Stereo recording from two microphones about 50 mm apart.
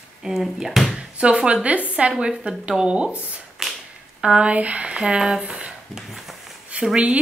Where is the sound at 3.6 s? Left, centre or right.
Centre.